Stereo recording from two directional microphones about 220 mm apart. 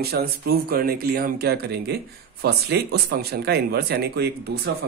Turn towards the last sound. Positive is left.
turn(degrees=-45)  # may be behind; listen again after turning